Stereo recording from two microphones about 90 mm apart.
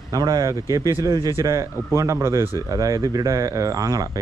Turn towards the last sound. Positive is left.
turn(degrees=-45)  # may be behind; listen again after turning